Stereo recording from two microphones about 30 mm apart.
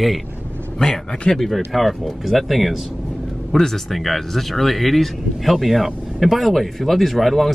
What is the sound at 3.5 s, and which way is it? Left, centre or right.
Speech, centre.